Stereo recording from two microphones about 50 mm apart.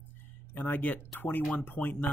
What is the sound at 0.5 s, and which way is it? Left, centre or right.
Speech, left.